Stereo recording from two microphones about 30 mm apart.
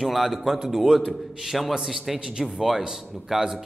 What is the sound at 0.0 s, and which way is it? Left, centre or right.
A man's voice, centre.